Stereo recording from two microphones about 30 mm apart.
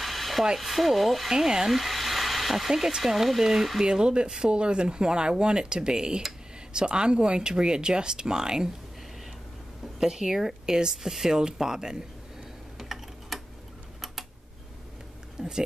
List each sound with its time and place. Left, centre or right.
0.0 s a sound: centre
0.6 s speech: centre
1.3 s speech: right
1.7 s hair dryer: centre
2.7 s speech: centre
3.8 s speech: right
9.9 s speech: centre
12.7 s typing: centre
15.4 s speech: right